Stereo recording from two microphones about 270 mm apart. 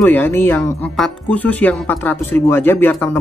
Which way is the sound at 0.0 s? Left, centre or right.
Centre.